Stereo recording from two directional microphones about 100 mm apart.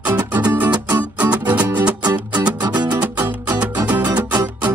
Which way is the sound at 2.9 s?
20° right (ahead or behind).